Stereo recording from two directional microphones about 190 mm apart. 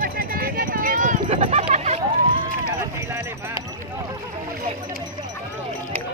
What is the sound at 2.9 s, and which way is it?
Clip-clop, 15° right (ahead or behind).